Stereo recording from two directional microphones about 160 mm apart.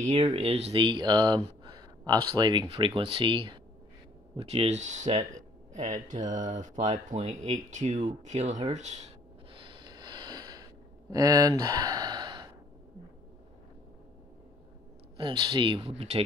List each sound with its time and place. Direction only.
0.2 s speech: 35° right (ahead or behind)
9.5 s snort: 30° right (ahead or behind)
11.1 s speech: 25° right (ahead or behind)
15.1 s speech: 30° right (ahead or behind)